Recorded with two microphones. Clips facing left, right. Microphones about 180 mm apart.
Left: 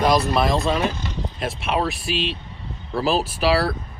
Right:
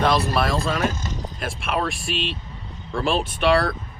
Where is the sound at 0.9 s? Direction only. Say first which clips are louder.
Left 1 dB; 45° right (ahead or behind).